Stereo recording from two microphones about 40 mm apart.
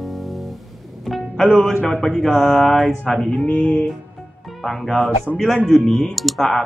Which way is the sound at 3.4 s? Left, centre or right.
Left.